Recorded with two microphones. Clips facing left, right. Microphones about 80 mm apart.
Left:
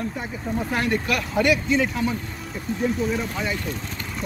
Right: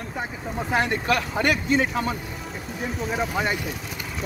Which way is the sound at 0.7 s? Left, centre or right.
Right.